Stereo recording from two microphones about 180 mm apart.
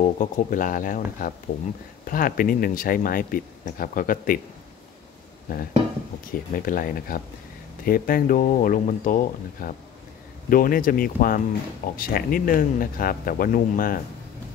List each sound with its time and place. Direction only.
0.0 s speech: 45° left (ahead or behind)
5.5 s speech: 50° left (ahead or behind)